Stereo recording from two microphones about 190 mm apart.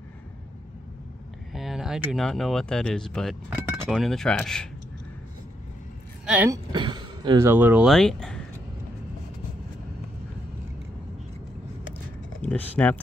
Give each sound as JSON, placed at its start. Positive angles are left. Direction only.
{"t": 1.5, "sound": "speech", "side_deg": 0}
{"t": 6.2, "sound": "speech", "side_deg": -5}
{"t": 6.5, "sound": "a sound", "side_deg": -25}
{"t": 7.4, "sound": "speech", "side_deg": -10}
{"t": 12.4, "sound": "speech", "side_deg": 10}